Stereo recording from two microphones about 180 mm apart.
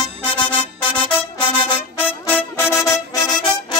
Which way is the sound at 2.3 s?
15° left (ahead or behind).